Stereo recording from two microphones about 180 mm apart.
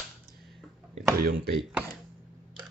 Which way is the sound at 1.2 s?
60° right (ahead or behind).